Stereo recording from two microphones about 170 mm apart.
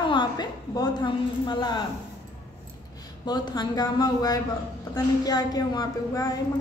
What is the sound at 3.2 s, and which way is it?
A woman's voice, 25° left (ahead or behind).